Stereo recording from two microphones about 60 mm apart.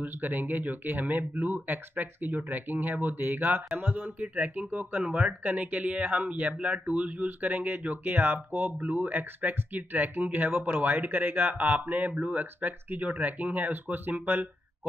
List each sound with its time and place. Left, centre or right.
0.0 s speech: right